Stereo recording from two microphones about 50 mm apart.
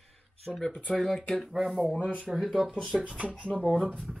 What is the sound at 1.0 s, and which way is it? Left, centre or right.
Speech, centre.